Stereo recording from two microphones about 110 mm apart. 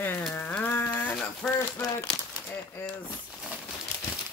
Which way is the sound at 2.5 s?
15° left (ahead or behind).